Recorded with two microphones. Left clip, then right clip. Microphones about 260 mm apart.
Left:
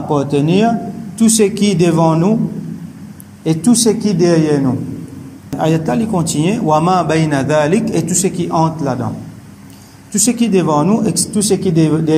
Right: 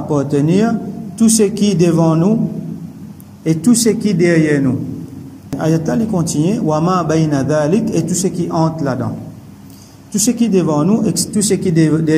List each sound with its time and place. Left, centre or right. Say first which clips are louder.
0.1 s a man's voice: left 1 dB; centre
3.4 s a man's voice: left 1 dB; centre
10.1 s a man's voice: left 1 dB; centre